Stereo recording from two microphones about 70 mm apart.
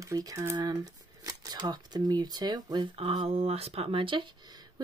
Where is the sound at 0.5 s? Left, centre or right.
Right.